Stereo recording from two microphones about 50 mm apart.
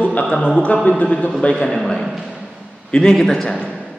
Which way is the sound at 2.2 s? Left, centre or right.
Centre.